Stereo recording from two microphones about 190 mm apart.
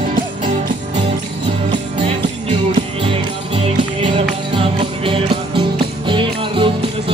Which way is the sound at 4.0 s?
30° right (ahead or behind).